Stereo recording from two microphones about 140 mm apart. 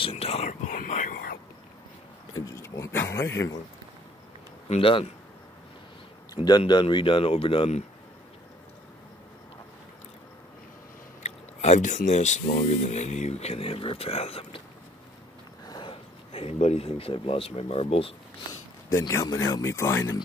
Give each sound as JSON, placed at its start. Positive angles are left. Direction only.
{"t": 0.0, "sound": "whispering", "side_deg": 45}
{"t": 0.7, "sound": "whispering", "side_deg": 75}
{"t": 2.3, "sound": "a sound", "side_deg": 25}
{"t": 4.6, "sound": "a man's voice", "side_deg": 40}
{"t": 6.3, "sound": "speech", "side_deg": 30}
{"t": 11.2, "sound": "speech", "side_deg": 55}
{"t": 15.6, "sound": "a sound", "side_deg": 30}
{"t": 15.9, "sound": "speech", "side_deg": 45}
{"t": 18.9, "sound": "speech", "side_deg": 20}